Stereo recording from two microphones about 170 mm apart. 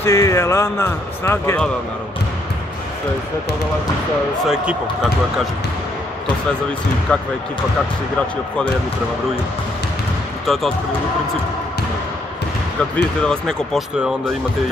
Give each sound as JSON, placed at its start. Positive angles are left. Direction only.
{"t": 0.0, "sound": "speech", "side_deg": 15}
{"t": 7.1, "sound": "speech", "side_deg": 5}
{"t": 10.4, "sound": "speech", "side_deg": 0}
{"t": 12.9, "sound": "speech", "side_deg": 5}